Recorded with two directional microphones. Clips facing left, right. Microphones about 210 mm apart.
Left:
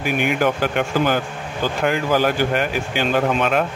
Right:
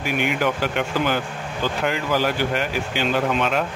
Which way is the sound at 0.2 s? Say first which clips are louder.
Left 3 dB; 45° left (ahead or behind).